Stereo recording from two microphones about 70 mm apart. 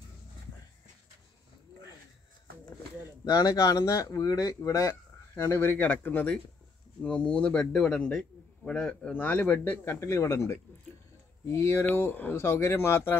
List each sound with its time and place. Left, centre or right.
3.3 s speech: left
5.3 s a man's voice: left; by 9.1 s centre
9.1 s speech: left
9.9 s speech: left
11.8 s speech: left